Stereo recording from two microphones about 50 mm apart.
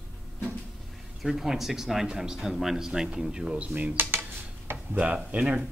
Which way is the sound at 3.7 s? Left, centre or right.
Right.